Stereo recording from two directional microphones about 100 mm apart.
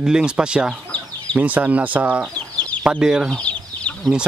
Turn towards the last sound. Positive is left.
turn(degrees=10)  # may be behind; listen again after turning